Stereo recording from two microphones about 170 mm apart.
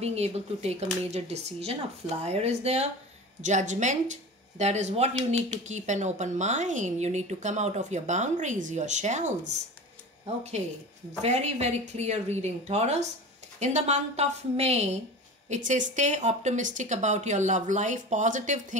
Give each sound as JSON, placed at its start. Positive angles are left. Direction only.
{"t": 0.0, "sound": "speech", "side_deg": -40}